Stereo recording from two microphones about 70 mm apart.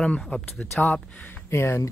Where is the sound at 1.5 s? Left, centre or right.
Left.